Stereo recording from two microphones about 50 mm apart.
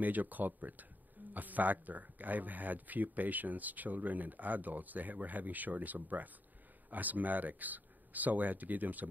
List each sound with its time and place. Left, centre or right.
0.0 s speech: right